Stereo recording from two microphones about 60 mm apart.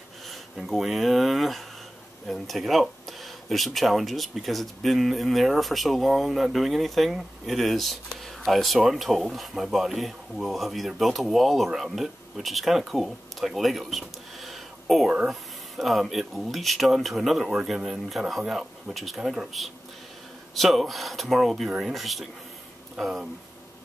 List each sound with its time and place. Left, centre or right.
0.3 s speech: centre